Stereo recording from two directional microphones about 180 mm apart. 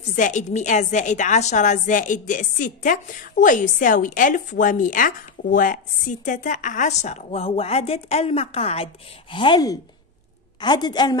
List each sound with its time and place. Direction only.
0.1 s a woman's voice: 45° left (ahead or behind); by 11.1 s 25° left (ahead or behind)